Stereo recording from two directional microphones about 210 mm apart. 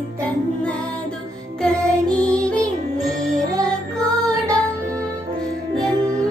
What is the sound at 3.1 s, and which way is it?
Music, 15° right (ahead or behind).